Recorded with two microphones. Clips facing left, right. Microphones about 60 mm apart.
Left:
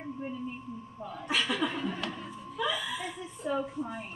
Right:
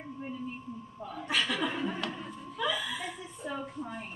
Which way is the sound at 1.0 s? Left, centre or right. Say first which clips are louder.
Even; centre.